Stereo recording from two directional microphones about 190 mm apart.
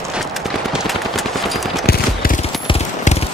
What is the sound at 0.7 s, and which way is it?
Machine gun, centre (ahead or behind).